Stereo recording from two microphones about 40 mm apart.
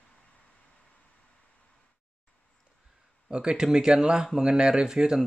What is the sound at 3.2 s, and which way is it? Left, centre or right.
Speech, right.